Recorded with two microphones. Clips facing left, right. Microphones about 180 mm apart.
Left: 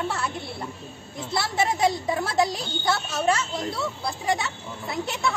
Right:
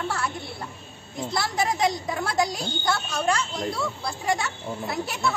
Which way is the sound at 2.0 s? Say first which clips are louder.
Left 2 dB; 25° left (ahead or behind).